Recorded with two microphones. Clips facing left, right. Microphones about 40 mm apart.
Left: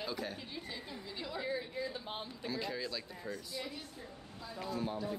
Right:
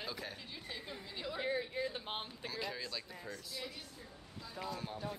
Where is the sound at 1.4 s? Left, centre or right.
Right.